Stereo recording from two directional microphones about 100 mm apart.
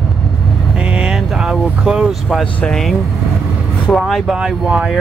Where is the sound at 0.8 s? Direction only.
10° right (ahead or behind).